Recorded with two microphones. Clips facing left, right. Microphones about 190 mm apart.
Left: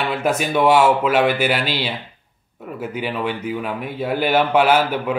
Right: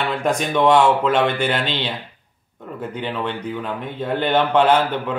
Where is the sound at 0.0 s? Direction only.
5° left (ahead or behind).